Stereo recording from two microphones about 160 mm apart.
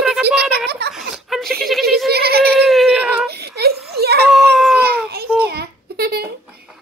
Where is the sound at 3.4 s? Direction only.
85° right.